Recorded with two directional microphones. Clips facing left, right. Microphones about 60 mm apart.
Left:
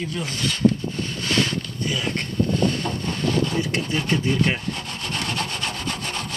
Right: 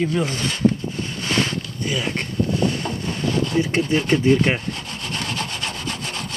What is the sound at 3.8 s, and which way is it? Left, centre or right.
Speech, centre.